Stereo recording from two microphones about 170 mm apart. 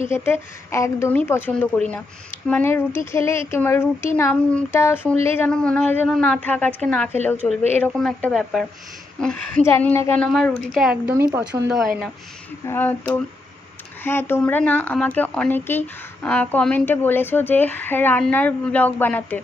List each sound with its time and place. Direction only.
0.1 s a woman's voice: 15° left (ahead or behind); by 11.2 s 10° right (ahead or behind)
11.2 s speech: 20° right (ahead or behind)
12.6 s speech: 10° left (ahead or behind)